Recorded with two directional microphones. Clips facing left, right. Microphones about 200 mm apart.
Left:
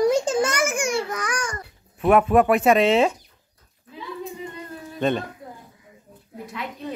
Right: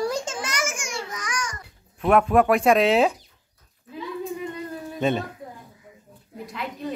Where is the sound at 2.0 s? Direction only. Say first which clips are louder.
Left 1 dB; 5° left (ahead or behind).